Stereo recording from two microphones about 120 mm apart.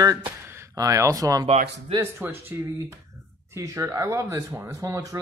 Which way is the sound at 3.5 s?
25° right (ahead or behind).